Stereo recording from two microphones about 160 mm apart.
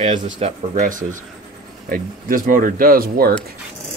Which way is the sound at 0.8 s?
55° right (ahead or behind).